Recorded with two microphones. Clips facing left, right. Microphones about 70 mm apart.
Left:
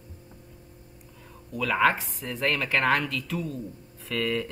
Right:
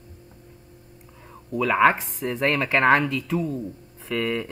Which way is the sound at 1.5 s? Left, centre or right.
Right.